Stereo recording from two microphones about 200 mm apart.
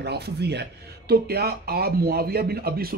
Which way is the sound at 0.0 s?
55° right (ahead or behind).